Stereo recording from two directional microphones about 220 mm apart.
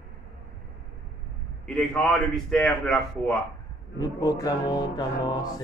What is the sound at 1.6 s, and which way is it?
A man's voice, 5° left (ahead or behind).